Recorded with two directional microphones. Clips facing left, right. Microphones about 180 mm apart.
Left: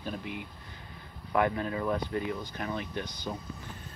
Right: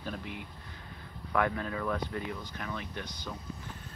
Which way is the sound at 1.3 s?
20° left (ahead or behind).